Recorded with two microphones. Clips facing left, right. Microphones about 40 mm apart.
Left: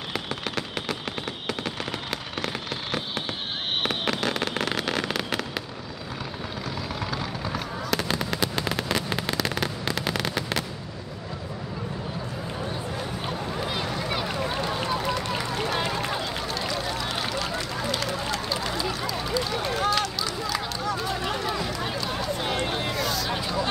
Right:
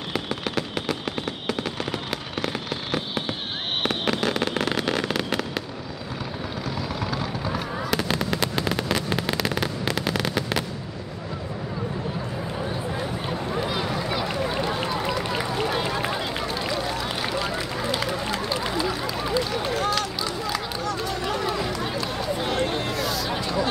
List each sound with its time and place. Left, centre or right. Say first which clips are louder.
0.1 s fireworks: right 3 dB; centre
7.1 s fireworks: right 2 dB; centre
13.0 s boat: right 2 dB; centre
19.5 s a sound: even; centre
20.5 s run: right 1 dB; centre
22.4 s a sound: right 4 dB; centre